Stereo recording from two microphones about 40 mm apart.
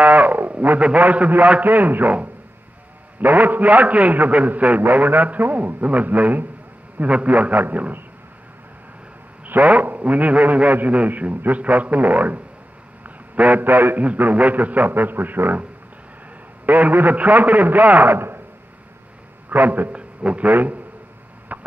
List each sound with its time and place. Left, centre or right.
0.0 s a man's voice: right
1.6 s a man's voice: right
3.2 s a man's voice: right
9.7 s a man's voice: right
13.0 s a sound: right
13.7 s a man's voice: right
13.9 s a man's voice: right
16.6 s a man's voice: right
18.0 s a man's voice: right
19.5 s a man's voice: right
19.9 s a man's voice: right
21.5 s a sound: right